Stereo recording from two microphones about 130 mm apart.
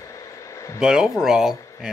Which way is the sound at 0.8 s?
5° right (ahead or behind).